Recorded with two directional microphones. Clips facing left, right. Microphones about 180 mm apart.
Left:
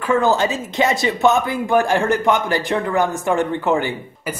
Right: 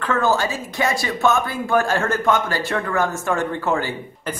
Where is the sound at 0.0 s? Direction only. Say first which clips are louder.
Left 3 dB; 15° left (ahead or behind).